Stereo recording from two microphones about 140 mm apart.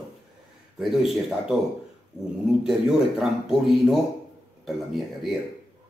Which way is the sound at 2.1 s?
15° left (ahead or behind).